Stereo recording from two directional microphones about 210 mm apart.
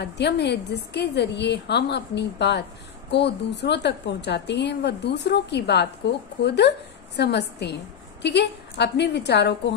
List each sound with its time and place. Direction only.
0.0 s a woman's voice: 55° left (ahead or behind)